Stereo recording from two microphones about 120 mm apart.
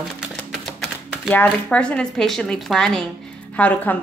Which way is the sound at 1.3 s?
15° left (ahead or behind).